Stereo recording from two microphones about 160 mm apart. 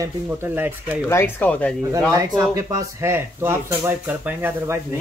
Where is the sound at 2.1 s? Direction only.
20° right (ahead or behind).